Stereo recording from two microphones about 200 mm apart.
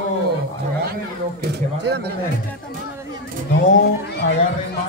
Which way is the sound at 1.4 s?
55° right (ahead or behind).